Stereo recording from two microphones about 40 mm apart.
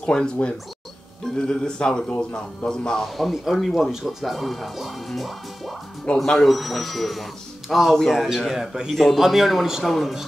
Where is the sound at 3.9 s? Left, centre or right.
Centre.